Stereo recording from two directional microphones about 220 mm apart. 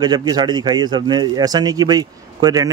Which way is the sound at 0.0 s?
20° right (ahead or behind).